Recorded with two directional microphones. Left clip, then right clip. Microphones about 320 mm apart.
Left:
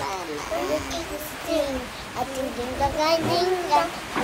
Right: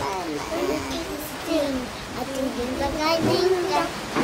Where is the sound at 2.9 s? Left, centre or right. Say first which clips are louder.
Right 1 dB; centre.